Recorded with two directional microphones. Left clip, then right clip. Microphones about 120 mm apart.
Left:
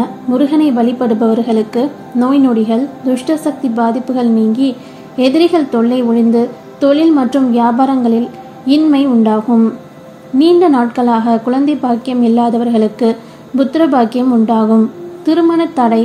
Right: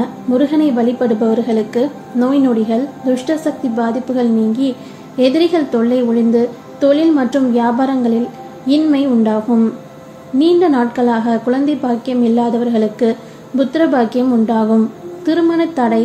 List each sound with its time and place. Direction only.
0.3 s a woman's voice: 40° left (ahead or behind)